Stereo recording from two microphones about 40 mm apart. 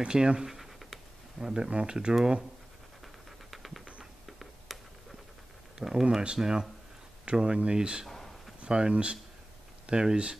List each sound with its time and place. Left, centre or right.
0.0 s speech: right
0.5 s scratch: centre
1.4 s speech: centre
2.0 s speech: centre
3.3 s a sound: centre
4.3 s tick-tock: centre
5.8 s speech: right